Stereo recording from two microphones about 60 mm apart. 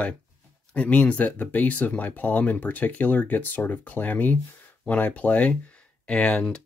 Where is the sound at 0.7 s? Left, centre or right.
Left.